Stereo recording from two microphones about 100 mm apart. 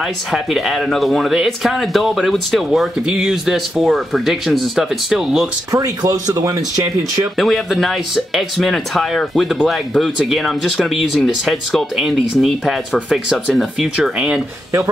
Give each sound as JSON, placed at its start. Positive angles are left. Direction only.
{"t": 0.3, "sound": "speech", "side_deg": 0}
{"t": 5.7, "sound": "speech", "side_deg": -35}
{"t": 7.3, "sound": "speech", "side_deg": 0}